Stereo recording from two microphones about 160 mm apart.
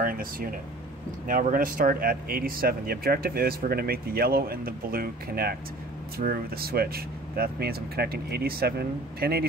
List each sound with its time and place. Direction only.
0.0 s speech: 65° right (ahead or behind)